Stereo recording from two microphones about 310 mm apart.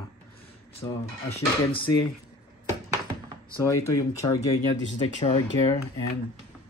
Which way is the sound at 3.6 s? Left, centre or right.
Centre.